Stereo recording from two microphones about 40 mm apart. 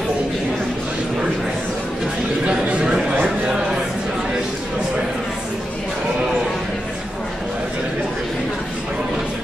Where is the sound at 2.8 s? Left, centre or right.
Centre.